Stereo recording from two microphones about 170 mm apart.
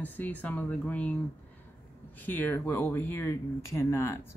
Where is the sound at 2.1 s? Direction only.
10° left (ahead or behind).